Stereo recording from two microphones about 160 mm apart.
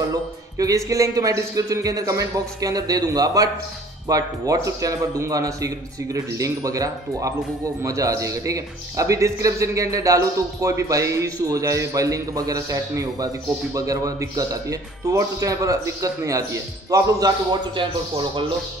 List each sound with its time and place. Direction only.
0.1 s speech: 20° right (ahead or behind)